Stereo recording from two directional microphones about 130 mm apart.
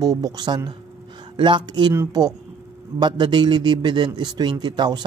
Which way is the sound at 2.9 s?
35° right (ahead or behind).